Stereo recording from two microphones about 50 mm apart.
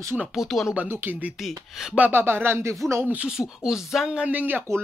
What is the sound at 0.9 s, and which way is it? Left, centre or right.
Speech, right.